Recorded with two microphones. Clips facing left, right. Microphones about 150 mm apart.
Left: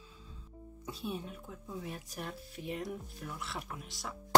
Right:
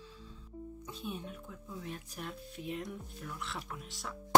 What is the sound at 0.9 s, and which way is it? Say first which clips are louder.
Speech: left 4 dB; 5° left (ahead or behind).